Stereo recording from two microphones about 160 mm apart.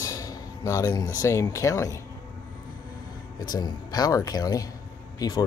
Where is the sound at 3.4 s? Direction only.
25° left (ahead or behind).